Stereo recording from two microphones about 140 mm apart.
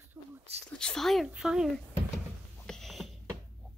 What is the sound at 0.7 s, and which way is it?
Speech, 5° left (ahead or behind).